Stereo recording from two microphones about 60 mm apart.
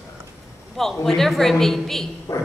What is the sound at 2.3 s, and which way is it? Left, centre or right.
Music, left.